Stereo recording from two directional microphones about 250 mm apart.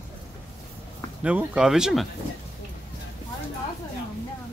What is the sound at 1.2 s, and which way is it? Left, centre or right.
Speech, centre.